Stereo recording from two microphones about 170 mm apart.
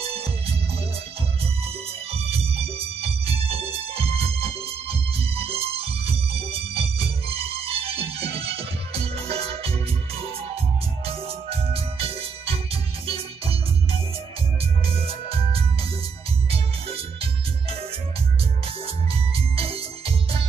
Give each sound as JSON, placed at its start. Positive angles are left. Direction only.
{"t": 2.0, "sound": "music", "side_deg": -35}
{"t": 11.1, "sound": "music", "side_deg": -35}
{"t": 16.4, "sound": "music", "side_deg": -35}
{"t": 19.5, "sound": "music", "side_deg": -35}